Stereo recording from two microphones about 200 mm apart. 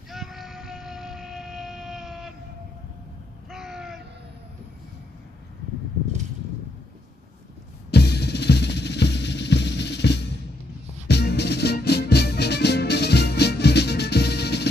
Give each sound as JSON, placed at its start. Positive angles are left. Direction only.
{"t": 0.1, "sound": "music", "side_deg": 0}
{"t": 3.4, "sound": "a sound", "side_deg": 0}
{"t": 7.9, "sound": "drum kit", "side_deg": 55}
{"t": 11.1, "sound": "music", "side_deg": 55}